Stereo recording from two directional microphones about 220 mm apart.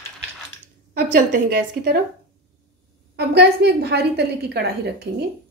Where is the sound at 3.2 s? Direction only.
50° right (ahead or behind).